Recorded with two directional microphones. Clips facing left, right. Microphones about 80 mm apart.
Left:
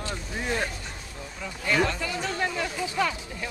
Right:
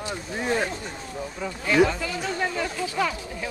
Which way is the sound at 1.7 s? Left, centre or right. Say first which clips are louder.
Right 5 dB; centre.